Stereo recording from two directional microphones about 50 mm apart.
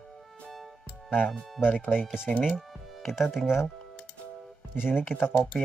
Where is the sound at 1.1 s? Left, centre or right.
Left.